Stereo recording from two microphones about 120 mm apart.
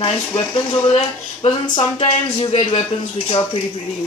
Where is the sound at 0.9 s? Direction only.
55° left (ahead or behind).